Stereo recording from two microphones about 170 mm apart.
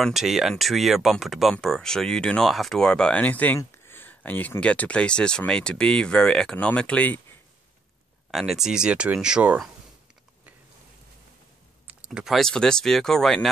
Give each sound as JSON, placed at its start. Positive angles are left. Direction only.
{"t": 0.0, "sound": "speech", "side_deg": 0}
{"t": 8.3, "sound": "speech", "side_deg": 0}
{"t": 11.9, "sound": "speech", "side_deg": -5}